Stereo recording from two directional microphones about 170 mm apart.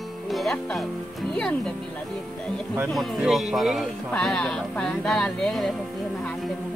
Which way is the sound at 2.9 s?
Centre (ahead or behind).